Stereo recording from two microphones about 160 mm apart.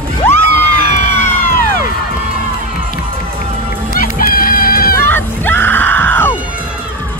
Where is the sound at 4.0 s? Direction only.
65° left (ahead or behind).